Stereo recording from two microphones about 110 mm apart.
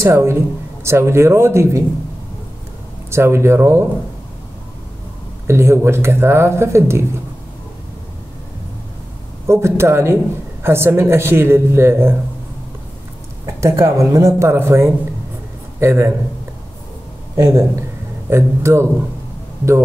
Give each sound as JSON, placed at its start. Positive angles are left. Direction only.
{"t": 0.0, "sound": "a man's voice", "side_deg": -25}
{"t": 3.1, "sound": "a man's voice", "side_deg": -25}
{"t": 5.5, "sound": "a man's voice", "side_deg": -25}
{"t": 9.5, "sound": "a man's voice", "side_deg": -25}
{"t": 13.6, "sound": "a man's voice", "side_deg": -25}
{"t": 17.4, "sound": "a man's voice", "side_deg": -25}